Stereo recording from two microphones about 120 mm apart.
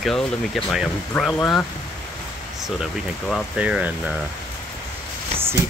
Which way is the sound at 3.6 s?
10° right (ahead or behind).